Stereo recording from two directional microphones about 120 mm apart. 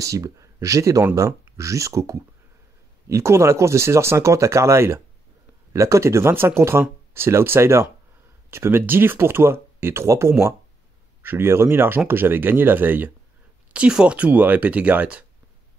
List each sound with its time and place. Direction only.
0.0 s speech: 25° right (ahead or behind); by 15.2 s 10° right (ahead or behind)